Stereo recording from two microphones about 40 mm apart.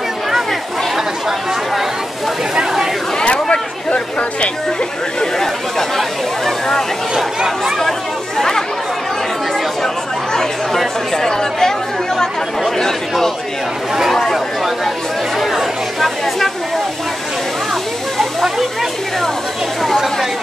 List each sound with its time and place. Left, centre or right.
0.3 s chatter: centre
2.5 s speech: centre
3.2 s a sound: centre
5.2 s speech: centre
8.4 s speech: centre
10.3 s speech: centre
15.3 s speech: centre
18.1 s a sound: centre